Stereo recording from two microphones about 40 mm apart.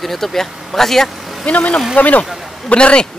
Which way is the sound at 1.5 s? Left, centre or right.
Left.